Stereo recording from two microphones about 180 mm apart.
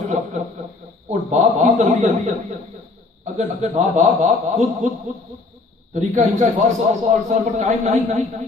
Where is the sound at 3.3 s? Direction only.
40° right (ahead or behind).